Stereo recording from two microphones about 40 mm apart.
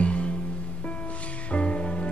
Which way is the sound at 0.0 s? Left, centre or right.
Left.